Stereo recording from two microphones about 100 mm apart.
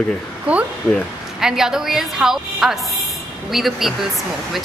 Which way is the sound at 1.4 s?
5° right (ahead or behind).